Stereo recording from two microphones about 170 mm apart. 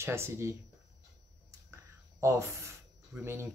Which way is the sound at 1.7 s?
15° right (ahead or behind).